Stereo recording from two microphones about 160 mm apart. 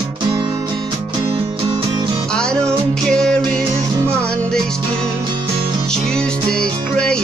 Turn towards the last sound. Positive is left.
turn(degrees=5)  # may be behind; listen again after turning